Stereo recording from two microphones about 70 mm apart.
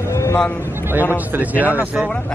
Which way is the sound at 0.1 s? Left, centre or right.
Left.